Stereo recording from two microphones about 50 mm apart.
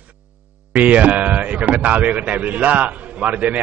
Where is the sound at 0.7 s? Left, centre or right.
Right.